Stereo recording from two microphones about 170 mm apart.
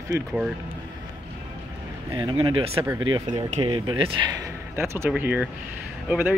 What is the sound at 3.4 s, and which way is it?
Speech, 40° right (ahead or behind).